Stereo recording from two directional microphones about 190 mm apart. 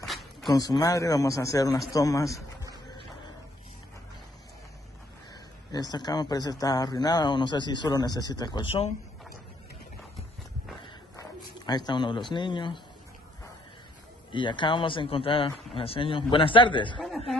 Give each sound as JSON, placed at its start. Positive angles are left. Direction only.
{"t": 0.0, "sound": "a sound", "side_deg": 0}
{"t": 0.5, "sound": "speech", "side_deg": 20}
{"t": 5.7, "sound": "speech", "side_deg": 20}
{"t": 11.6, "sound": "speech", "side_deg": 20}
{"t": 14.3, "sound": "speech", "side_deg": 25}